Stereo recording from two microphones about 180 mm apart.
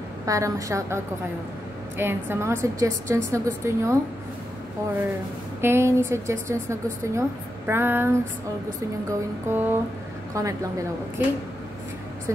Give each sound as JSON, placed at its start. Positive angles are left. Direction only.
{"t": 0.2, "sound": "a woman's voice", "side_deg": -15}
{"t": 5.6, "sound": "a woman's voice", "side_deg": -15}
{"t": 9.5, "sound": "a woman's voice", "side_deg": -10}